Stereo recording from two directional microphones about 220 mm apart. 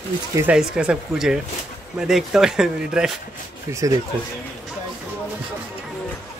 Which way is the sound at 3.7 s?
15° right (ahead or behind).